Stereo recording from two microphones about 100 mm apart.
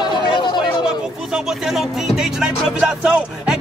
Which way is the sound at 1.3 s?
5° right (ahead or behind).